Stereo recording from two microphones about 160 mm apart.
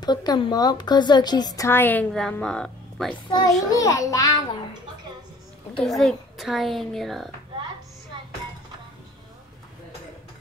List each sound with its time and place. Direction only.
0.0 s a woman's voice: 25° left (ahead or behind); by 3.2 s 5° left (ahead or behind)
3.3 s a woman's voice: 25° left (ahead or behind)
5.9 s a woman's voice: centre (ahead or behind)
8.1 s a sound: 30° right (ahead or behind)